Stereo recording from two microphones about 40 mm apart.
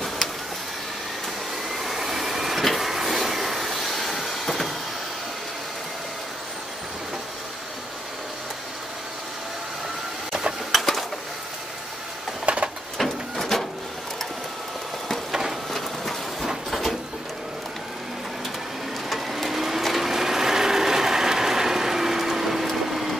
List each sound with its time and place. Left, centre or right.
1.7 s vacuum cleaner: centre
10.7 s a sound: centre
12.5 s printer: right
12.9 s printer: centre
15.7 s vehicle: centre
19.0 s a sound: centre
19.8 s ratchet: centre